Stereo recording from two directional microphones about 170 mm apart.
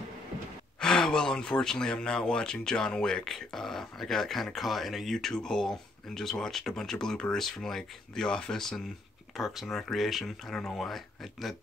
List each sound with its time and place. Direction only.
0.7 s speech: 5° left (ahead or behind)